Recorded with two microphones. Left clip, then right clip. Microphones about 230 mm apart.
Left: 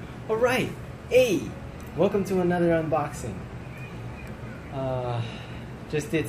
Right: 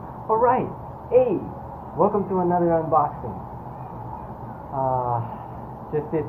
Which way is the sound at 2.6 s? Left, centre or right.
Centre.